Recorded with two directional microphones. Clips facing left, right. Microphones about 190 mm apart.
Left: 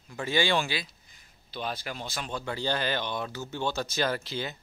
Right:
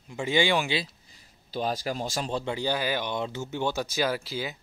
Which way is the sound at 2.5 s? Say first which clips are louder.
Left 1 dB; 10° right (ahead or behind).